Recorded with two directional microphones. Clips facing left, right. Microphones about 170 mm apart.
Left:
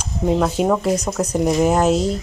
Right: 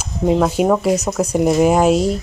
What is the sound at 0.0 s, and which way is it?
A woman's voice, 10° right (ahead or behind).